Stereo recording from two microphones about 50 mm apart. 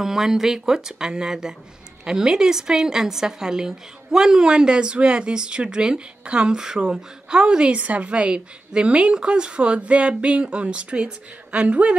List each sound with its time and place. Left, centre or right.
0.0 s a woman's voice: centre; by 11.9 s right